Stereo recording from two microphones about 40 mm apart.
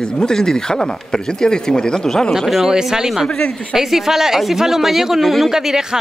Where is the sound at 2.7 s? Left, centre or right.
Centre.